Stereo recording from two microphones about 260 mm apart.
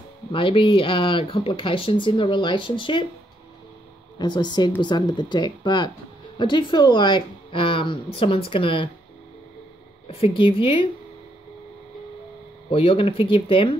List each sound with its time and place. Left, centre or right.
0.3 s speech: centre
4.2 s speech: centre
10.0 s speech: left
12.7 s speech: left